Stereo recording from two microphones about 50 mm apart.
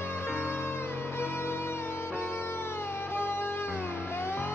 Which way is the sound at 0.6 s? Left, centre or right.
Left.